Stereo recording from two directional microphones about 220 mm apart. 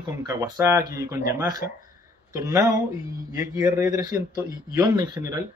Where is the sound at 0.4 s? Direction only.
15° right (ahead or behind).